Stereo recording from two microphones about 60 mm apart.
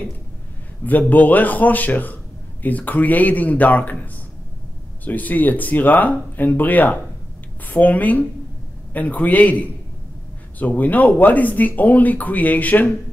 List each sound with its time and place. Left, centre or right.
0.8 s speech: left
5.0 s speech: left